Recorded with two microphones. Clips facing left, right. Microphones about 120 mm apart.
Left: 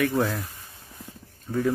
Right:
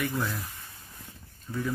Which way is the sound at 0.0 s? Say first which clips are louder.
Left 7 dB; 65° left (ahead or behind).